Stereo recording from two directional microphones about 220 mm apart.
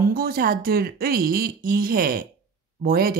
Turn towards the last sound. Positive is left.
turn(degrees=-40)  # may be behind; listen again after turning